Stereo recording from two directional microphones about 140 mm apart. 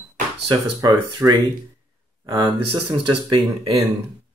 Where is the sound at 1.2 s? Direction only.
15° right (ahead or behind).